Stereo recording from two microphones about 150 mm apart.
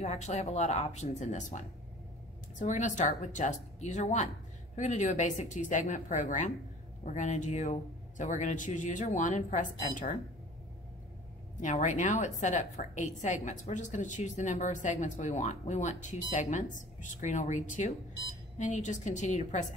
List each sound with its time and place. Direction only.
0.0 s a woman's voice: 50° left (ahead or behind)
2.6 s a man's voice: 55° left (ahead or behind)
11.6 s a woman's voice: 55° left (ahead or behind)